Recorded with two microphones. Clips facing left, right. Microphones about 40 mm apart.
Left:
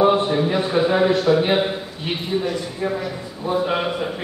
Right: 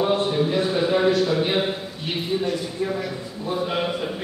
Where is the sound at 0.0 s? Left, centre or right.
Left.